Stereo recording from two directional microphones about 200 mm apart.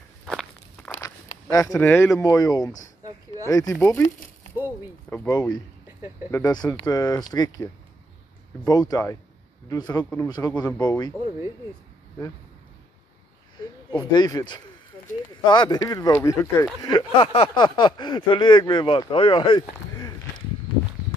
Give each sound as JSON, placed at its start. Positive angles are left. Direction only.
{"t": 0.3, "sound": "walk", "side_deg": 5}
{"t": 1.5, "sound": "speech", "side_deg": 15}
{"t": 5.1, "sound": "speech", "side_deg": 10}
{"t": 6.3, "sound": "speech", "side_deg": 20}
{"t": 13.6, "sound": "speech", "side_deg": 20}
{"t": 16.8, "sound": "speech", "side_deg": 25}